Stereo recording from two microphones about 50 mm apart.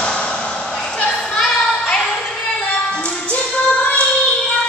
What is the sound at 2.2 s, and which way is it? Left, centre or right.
Music, centre.